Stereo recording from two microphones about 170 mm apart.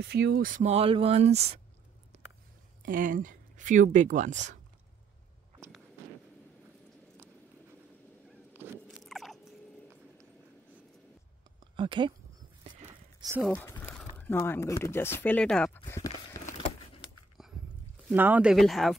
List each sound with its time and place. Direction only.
0.0 s speech: 75° right (ahead or behind); by 0.7 s 55° right (ahead or behind)
0.7 s speech: 35° right (ahead or behind)
2.8 s speech: 50° right (ahead or behind)
8.8 s biting: centre (ahead or behind)
11.7 s speech: 30° right (ahead or behind)
13.2 s speech: 15° right (ahead or behind)
13.5 s a sound: 15° left (ahead or behind)
14.1 s speech: 10° left (ahead or behind)
16.1 s a sound: 40° left (ahead or behind)
17.4 s a sound: centre (ahead or behind)
18.1 s speech: 10° right (ahead or behind)